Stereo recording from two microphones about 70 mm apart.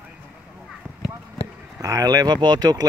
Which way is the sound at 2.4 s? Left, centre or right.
Right.